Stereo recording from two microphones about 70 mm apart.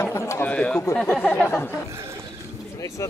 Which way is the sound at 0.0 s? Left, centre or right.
Left.